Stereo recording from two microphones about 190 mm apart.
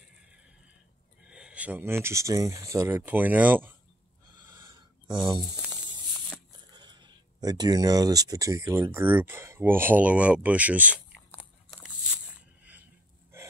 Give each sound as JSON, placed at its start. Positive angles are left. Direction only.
{"t": 1.2, "sound": "speech", "side_deg": -5}
{"t": 4.4, "sound": "a sound", "side_deg": -15}
{"t": 6.7, "sound": "speech", "side_deg": -20}